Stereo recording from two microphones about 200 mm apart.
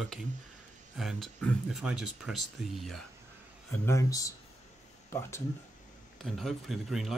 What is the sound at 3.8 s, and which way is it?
Speech, 15° left (ahead or behind).